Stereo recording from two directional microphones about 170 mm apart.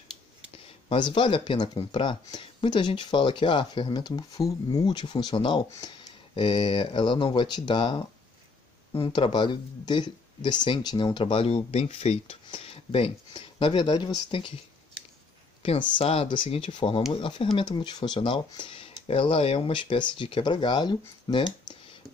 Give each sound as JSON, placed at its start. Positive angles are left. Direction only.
{"t": 0.8, "sound": "speech", "side_deg": 30}
{"t": 16.0, "sound": "speech", "side_deg": 35}